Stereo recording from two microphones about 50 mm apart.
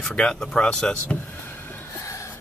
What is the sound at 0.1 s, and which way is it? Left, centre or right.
Speech, centre.